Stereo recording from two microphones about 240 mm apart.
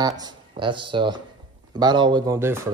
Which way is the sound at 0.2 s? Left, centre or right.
Centre.